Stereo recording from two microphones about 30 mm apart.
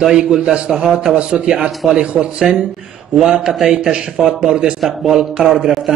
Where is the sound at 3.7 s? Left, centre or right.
Right.